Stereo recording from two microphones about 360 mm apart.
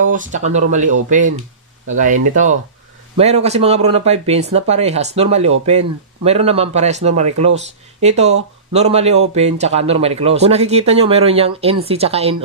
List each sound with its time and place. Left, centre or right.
0.1 s speech: right